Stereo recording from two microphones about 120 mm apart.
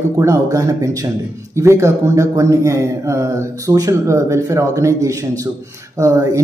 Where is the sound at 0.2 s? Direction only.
25° right (ahead or behind).